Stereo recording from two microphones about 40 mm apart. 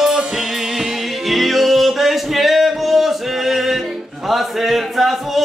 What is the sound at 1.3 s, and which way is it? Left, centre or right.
Music, centre.